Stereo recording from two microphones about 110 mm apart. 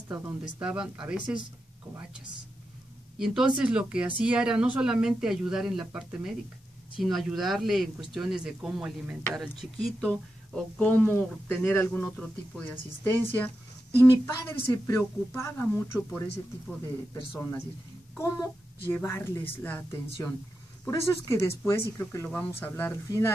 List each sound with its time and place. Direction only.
0.6 s speech: 10° right (ahead or behind)
3.2 s speech: 5° right (ahead or behind); by 16.0 s 25° left (ahead or behind)
18.1 s a child's voice: 25° left (ahead or behind)
23.0 s speech: 30° left (ahead or behind)